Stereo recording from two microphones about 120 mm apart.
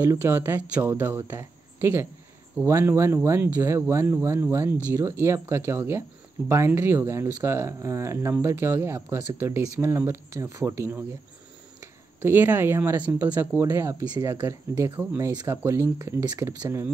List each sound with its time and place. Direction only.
0.0 s speech: 20° right (ahead or behind)
12.2 s speech: 15° right (ahead or behind)
13.6 s speech: 25° right (ahead or behind)